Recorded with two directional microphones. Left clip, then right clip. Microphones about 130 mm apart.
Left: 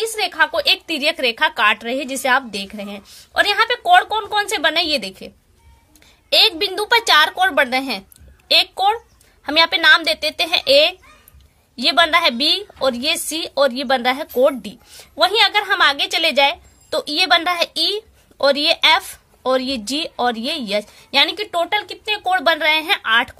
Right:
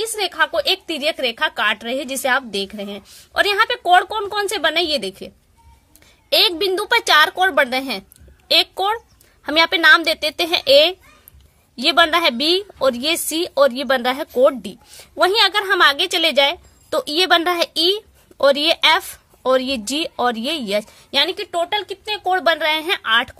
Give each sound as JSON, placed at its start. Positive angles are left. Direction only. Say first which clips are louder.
{"t": 0.0, "sound": "a woman's voice", "louder": "left 2 dB", "side_deg": -60}
{"t": 6.3, "sound": "a woman's voice", "louder": "left 1 dB", "side_deg": -55}